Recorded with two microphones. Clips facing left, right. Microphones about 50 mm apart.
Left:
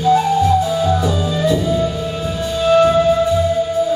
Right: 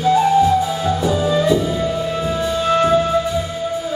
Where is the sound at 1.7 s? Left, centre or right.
Right.